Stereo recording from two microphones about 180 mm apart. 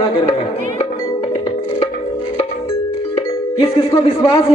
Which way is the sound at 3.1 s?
30° left (ahead or behind).